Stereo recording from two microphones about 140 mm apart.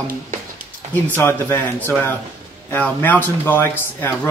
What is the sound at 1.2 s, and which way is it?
Speech, 15° left (ahead or behind).